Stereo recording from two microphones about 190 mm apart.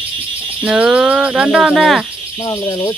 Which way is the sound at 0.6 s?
5° right (ahead or behind).